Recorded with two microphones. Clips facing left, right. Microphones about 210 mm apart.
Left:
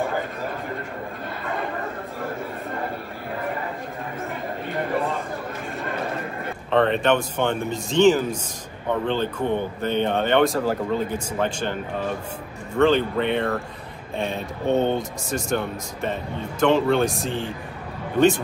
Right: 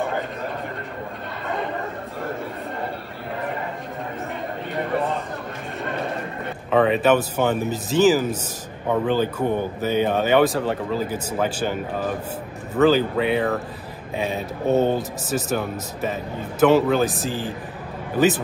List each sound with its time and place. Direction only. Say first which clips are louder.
6.7 s speech: right 2 dB; 5° right (ahead or behind)